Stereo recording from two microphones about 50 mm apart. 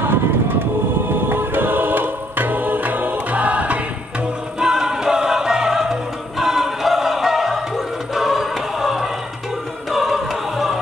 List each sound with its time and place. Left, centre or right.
0.0 s vehicle: right
1.3 s choir: right
4.6 s music: centre